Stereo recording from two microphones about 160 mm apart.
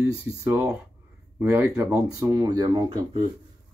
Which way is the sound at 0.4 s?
10° right (ahead or behind).